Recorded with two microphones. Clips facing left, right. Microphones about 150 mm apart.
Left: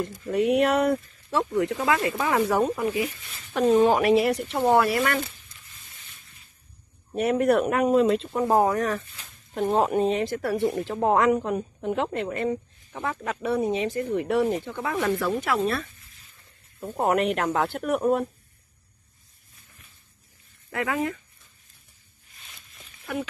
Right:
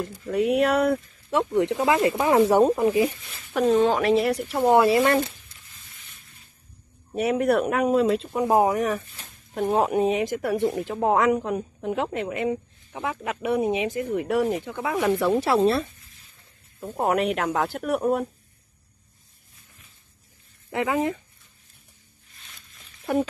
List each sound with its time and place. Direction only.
0.0 s speech: 10° right (ahead or behind)
1.5 s speech: 20° right (ahead or behind)
3.7 s speech: 5° left (ahead or behind)
4.4 s speech: 10° right (ahead or behind)
4.7 s speech: 25° right (ahead or behind)
7.1 s speech: 5° right (ahead or behind)
8.5 s speech: 15° right (ahead or behind)
10.9 s speech: 5° right (ahead or behind)
15.1 s speech: 25° right (ahead or behind)
16.8 s speech: centre (ahead or behind)
20.7 s speech: 20° right (ahead or behind)